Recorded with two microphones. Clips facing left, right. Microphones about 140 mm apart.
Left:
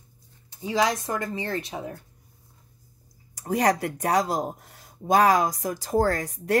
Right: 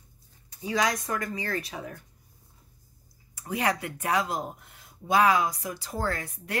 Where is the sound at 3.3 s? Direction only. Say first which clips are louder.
Left 6 dB; 40° left (ahead or behind).